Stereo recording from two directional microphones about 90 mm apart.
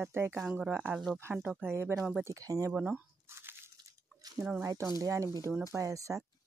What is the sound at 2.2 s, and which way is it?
Speech, 40° right (ahead or behind).